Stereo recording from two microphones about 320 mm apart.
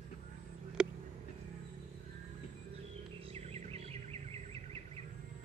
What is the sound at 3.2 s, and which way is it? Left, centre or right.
Bird, centre.